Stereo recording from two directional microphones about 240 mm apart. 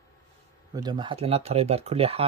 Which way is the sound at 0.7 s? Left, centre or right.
Centre.